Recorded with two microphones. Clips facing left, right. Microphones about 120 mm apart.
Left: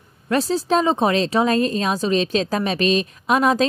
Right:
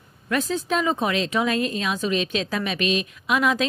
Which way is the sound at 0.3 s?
35° left (ahead or behind).